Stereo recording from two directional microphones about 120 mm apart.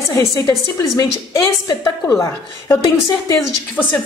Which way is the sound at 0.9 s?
30° left (ahead or behind).